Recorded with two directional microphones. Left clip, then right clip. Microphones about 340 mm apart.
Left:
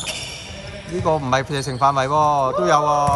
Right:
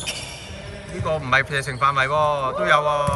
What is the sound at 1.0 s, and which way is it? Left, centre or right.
A man's voice, centre.